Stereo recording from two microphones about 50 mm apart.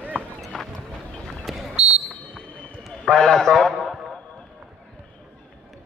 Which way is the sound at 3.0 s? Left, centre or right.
Centre.